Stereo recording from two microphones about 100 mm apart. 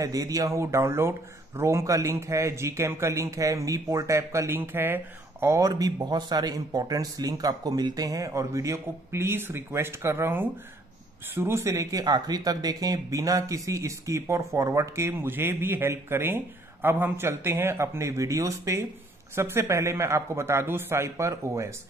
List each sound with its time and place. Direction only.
0.0 s a man's voice: 35° right (ahead or behind)
5.7 s a man's voice: 40° right (ahead or behind)